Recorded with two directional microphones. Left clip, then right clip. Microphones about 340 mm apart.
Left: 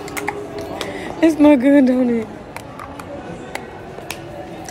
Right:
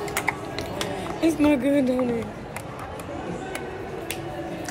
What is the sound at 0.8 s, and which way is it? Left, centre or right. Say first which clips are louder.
Speech: left 8 dB; centre.